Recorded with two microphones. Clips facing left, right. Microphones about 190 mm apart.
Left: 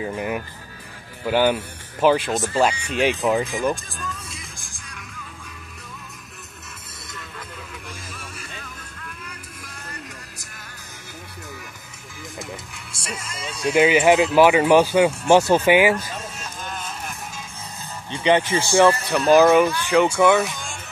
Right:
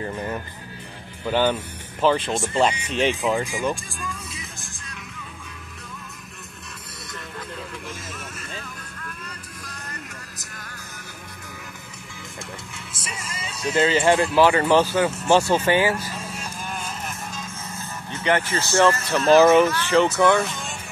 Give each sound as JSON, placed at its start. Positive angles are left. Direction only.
{"t": 0.0, "sound": "speech", "side_deg": 10}
{"t": 4.0, "sound": "music", "side_deg": -5}
{"t": 12.7, "sound": "music", "side_deg": -5}
{"t": 13.7, "sound": "speech", "side_deg": 10}
{"t": 18.1, "sound": "speech", "side_deg": 15}